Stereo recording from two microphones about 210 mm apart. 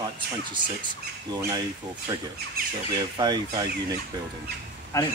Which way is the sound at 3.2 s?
20° right (ahead or behind).